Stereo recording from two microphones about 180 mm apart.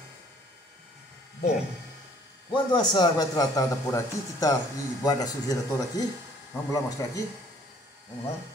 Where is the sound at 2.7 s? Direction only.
25° left (ahead or behind).